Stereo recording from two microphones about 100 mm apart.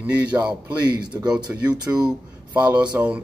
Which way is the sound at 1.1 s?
25° right (ahead or behind).